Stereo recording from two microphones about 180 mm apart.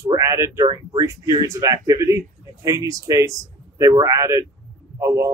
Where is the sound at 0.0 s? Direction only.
15° right (ahead or behind).